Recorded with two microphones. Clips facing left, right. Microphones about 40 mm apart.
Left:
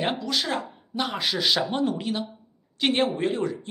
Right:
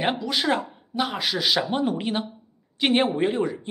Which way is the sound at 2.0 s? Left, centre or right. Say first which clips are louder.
Right 2 dB; right.